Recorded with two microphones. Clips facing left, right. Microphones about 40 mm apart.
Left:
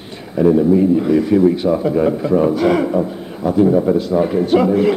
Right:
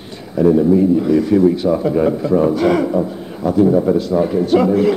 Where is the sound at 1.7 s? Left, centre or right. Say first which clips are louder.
Even; centre.